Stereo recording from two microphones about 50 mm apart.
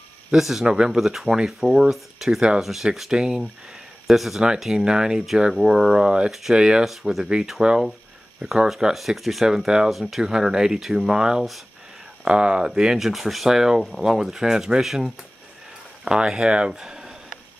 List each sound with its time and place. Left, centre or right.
0.3 s speech: centre
4.7 s speech: centre
6.9 s speech: centre
8.9 s speech: centre
16.8 s a sound: centre